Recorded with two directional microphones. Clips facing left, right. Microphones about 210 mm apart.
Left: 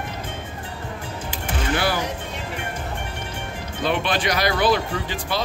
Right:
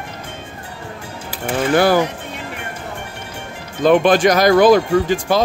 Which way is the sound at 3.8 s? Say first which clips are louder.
Right 11 dB; 45° right (ahead or behind).